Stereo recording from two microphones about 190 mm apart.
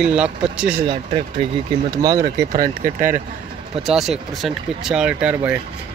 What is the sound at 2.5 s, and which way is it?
Speech, 50° right (ahead or behind).